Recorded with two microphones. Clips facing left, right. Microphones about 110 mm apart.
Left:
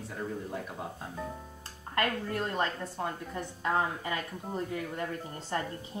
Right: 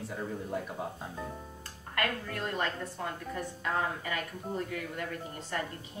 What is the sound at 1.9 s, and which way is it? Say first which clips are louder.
A woman's voice: left 3 dB; 25° left (ahead or behind).